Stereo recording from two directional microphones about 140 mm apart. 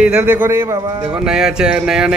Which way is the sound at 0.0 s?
10° right (ahead or behind).